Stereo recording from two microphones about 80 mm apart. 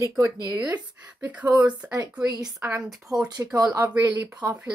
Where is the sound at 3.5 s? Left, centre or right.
Right.